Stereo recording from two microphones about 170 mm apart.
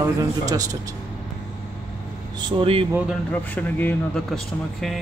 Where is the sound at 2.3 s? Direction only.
30° right (ahead or behind).